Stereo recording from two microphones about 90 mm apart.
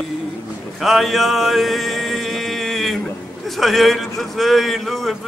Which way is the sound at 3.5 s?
Centre (ahead or behind).